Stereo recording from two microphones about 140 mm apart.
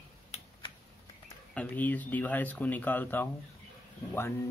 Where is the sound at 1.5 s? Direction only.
10° left (ahead or behind).